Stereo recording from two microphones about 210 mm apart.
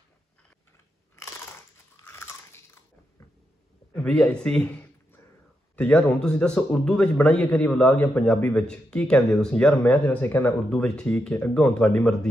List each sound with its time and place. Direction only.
1.1 s crunch: 15° left (ahead or behind)
2.0 s biting: 10° left (ahead or behind)
3.9 s a sound: 5° left (ahead or behind)
5.8 s a man's voice: 5° left (ahead or behind)